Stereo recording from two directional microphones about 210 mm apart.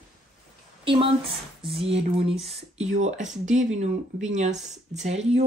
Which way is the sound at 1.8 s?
30° right (ahead or behind).